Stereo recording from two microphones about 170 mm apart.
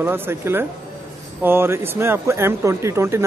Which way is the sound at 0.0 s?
15° right (ahead or behind).